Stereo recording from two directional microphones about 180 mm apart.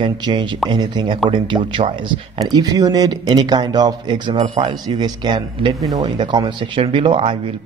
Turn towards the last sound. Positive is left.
turn(degrees=-30)  # may be behind; listen again after turning